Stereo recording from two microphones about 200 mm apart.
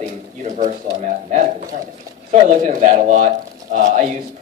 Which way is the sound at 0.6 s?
40° right (ahead or behind).